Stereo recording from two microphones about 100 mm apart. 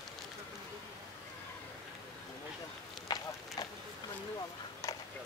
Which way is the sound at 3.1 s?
40° left (ahead or behind).